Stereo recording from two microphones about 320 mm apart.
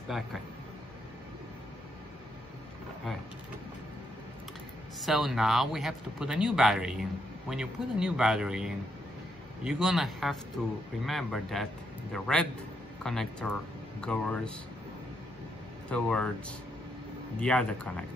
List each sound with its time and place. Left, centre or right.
5.0 s speech: centre
15.9 s speech: centre